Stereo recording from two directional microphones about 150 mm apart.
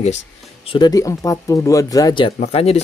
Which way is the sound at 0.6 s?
30° left (ahead or behind).